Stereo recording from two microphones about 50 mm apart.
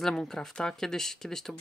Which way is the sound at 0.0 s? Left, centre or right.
Centre.